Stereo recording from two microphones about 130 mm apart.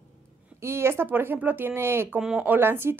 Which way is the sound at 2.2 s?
5° right (ahead or behind).